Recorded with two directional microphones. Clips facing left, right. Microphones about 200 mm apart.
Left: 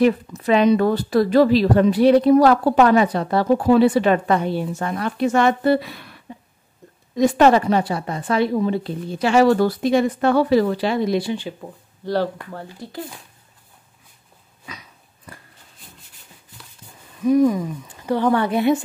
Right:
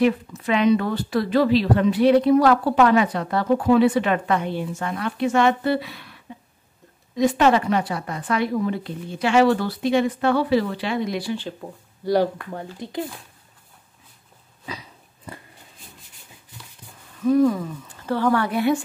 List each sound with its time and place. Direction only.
0.0 s speech: 40° left (ahead or behind)
7.2 s speech: 40° left (ahead or behind)
11.1 s speech: 20° left (ahead or behind)
11.6 s speech: 10° right (ahead or behind)
14.7 s dog: 30° right (ahead or behind)
17.2 s speech: 15° left (ahead or behind)